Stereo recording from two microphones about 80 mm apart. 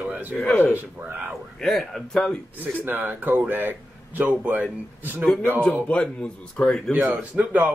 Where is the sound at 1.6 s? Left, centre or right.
Centre.